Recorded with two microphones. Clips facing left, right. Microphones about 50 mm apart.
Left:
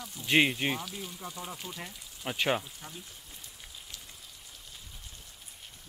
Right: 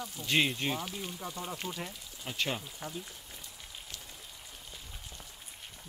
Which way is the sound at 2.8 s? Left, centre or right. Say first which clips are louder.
Right 5 dB; centre.